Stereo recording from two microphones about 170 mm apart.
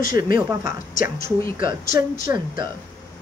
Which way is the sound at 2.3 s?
30° right (ahead or behind).